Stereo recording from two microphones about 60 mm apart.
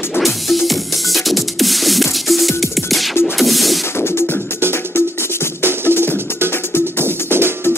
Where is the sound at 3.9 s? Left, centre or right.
Left.